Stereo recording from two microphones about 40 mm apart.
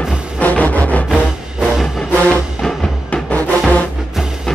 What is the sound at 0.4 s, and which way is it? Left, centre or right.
Music, left.